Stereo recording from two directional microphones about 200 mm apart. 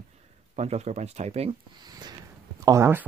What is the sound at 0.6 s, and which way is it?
Speech, 35° right (ahead or behind).